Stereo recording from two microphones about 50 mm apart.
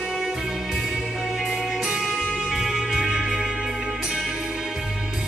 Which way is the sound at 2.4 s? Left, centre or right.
Centre.